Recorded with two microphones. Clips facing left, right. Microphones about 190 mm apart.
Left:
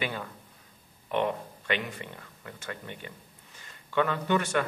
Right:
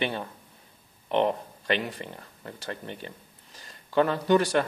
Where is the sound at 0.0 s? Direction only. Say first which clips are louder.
Right 4 dB; 30° right (ahead or behind).